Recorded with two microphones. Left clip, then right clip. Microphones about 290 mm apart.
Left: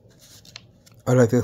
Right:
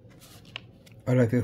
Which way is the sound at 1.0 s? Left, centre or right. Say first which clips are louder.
Left 7 dB; centre.